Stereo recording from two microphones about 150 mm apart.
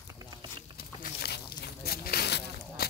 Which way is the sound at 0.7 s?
90° left.